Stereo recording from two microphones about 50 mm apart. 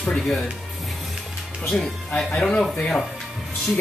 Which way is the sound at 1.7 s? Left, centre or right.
Centre.